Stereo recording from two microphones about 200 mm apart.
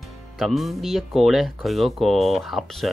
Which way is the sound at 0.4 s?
Centre (ahead or behind).